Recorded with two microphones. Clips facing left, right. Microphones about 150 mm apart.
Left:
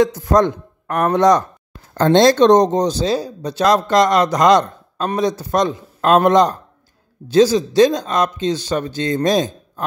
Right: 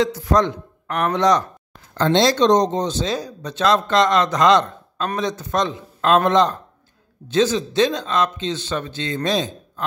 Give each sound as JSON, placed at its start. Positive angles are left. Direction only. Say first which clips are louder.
{"t": 0.2, "sound": "speech", "louder": "left 3 dB", "side_deg": 50}